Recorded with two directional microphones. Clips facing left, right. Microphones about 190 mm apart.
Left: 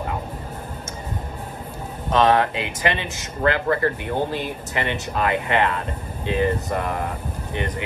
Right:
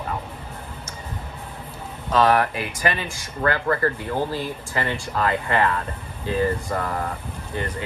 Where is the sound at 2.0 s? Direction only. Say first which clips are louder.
Left 1 dB; 25° left (ahead or behind).